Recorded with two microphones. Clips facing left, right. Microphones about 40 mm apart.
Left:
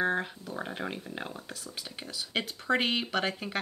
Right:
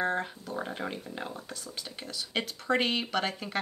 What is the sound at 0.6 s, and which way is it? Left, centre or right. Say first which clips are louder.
Speech: right 1 dB; centre.